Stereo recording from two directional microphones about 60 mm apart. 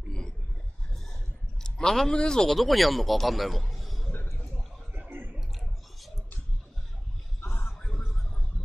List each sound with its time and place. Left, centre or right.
1.6 s a man's voice: centre
5.1 s a sound: right
7.4 s music: left